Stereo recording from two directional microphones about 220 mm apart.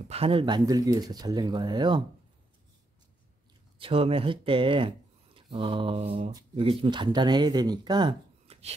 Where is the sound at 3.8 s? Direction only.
25° right (ahead or behind).